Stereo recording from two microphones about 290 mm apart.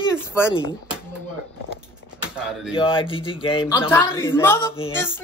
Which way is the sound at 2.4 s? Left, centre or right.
Centre.